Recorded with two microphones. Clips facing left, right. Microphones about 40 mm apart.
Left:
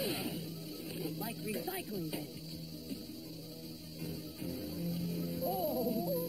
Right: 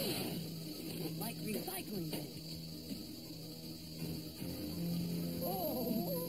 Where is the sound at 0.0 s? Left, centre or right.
Centre.